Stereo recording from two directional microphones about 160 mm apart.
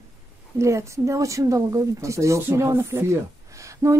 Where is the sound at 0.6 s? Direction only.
20° right (ahead or behind).